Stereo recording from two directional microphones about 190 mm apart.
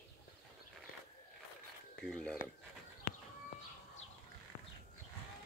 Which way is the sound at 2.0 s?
5° left (ahead or behind).